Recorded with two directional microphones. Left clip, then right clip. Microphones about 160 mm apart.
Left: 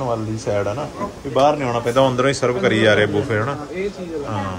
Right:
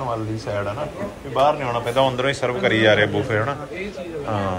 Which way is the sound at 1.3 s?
40° left (ahead or behind).